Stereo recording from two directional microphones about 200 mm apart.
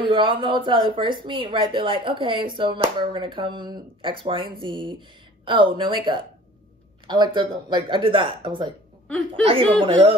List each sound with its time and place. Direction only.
0.0 s a woman's voice: 25° right (ahead or behind)